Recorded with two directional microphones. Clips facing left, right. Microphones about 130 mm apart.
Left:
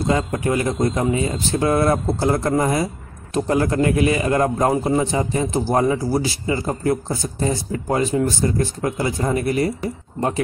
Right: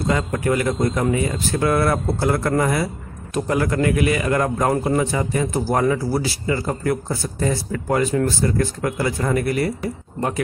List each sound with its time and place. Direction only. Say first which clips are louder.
0.1 s a man's voice: even; 25° left (ahead or behind)